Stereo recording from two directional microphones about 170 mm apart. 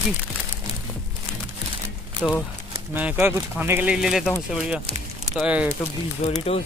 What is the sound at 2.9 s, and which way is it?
Speech, 10° right (ahead or behind).